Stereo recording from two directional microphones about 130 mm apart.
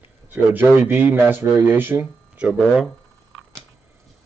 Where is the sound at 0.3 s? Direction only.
15° right (ahead or behind).